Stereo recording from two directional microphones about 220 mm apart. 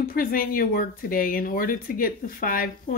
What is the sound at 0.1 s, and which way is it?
Speech, 40° left (ahead or behind).